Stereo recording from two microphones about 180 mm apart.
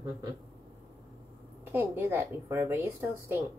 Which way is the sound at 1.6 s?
15° right (ahead or behind).